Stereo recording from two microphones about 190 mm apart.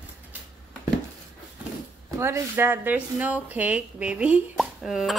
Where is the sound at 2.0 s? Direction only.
15° right (ahead or behind).